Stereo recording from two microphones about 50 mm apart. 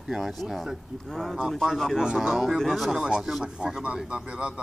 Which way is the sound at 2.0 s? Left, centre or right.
Centre.